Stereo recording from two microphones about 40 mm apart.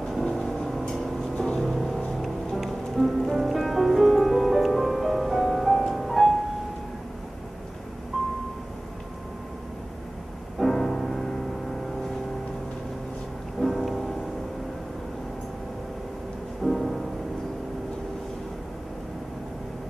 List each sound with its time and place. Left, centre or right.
0.0 s a sound: centre
1.3 s music: centre
1.6 s music: centre
8.1 s vehicle: centre
10.6 s music: centre
13.6 s music: centre
16.6 s music: centre